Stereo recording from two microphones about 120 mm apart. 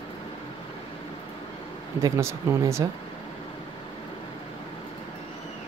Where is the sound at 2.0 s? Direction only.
20° right (ahead or behind).